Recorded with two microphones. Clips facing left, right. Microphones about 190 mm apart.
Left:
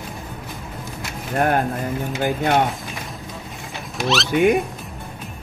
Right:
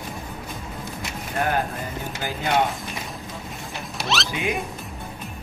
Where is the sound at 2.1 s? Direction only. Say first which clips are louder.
Left 8 dB; 55° left (ahead or behind).